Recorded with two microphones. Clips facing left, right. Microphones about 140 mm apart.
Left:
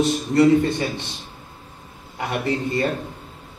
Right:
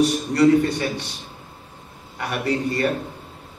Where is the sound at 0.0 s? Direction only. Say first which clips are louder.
Even; 25° left (ahead or behind).